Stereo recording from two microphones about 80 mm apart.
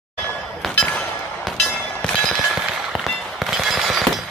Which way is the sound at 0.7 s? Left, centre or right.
Centre.